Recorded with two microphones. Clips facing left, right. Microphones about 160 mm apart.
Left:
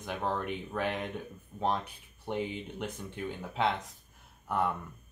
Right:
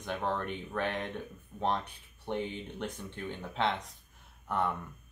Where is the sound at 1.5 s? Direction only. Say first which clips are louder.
Left 1 dB; 30° left (ahead or behind).